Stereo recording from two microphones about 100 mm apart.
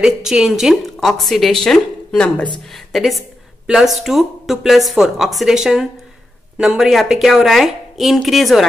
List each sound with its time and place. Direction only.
0.0 s speech: 5° right (ahead or behind); by 2.4 s 10° left (ahead or behind)
2.9 s speech: centre (ahead or behind)